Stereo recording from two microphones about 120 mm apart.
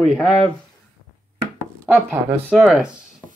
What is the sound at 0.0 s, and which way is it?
Speech, centre (ahead or behind).